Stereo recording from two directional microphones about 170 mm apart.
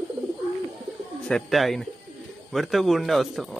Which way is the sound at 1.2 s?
Centre (ahead or behind).